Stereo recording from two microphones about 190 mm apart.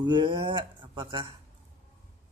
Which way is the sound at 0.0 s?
25° right (ahead or behind).